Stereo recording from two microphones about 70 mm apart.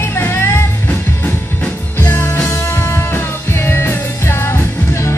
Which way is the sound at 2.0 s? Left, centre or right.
Left.